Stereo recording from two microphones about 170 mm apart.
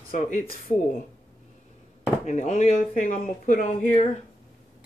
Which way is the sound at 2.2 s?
45° left (ahead or behind).